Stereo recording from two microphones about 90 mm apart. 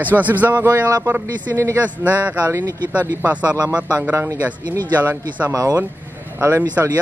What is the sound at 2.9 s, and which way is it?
Speech, 15° right (ahead or behind).